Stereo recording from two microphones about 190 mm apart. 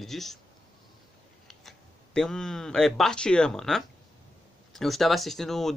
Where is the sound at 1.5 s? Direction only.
Centre (ahead or behind).